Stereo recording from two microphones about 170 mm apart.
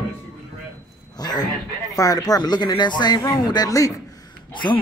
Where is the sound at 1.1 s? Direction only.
25° left (ahead or behind).